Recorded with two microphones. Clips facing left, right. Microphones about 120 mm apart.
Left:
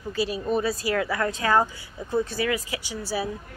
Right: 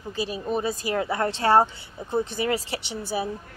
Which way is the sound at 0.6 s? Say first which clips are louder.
Even; 20° right (ahead or behind).